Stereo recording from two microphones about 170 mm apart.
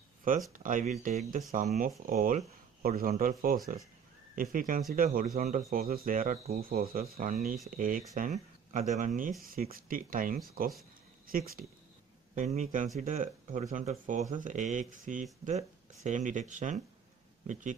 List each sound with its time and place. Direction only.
0.5 s speech: 50° right (ahead or behind)
12.4 s speech: 45° right (ahead or behind)